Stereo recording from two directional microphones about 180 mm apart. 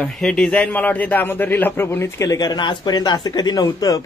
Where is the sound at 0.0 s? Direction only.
5° left (ahead or behind).